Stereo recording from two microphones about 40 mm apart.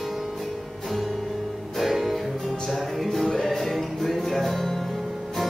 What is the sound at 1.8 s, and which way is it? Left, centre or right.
Music, centre.